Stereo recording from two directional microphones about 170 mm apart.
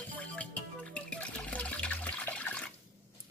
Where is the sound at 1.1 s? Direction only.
10° left (ahead or behind).